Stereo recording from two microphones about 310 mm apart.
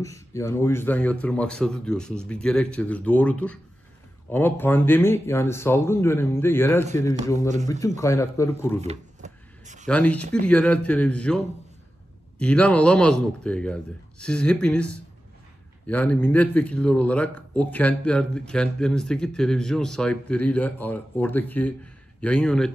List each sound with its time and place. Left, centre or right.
0.3 s a man's voice: centre
7.3 s a man's voice: right
7.8 s speech: centre
8.8 s a sound: right
9.8 s a man's voice: centre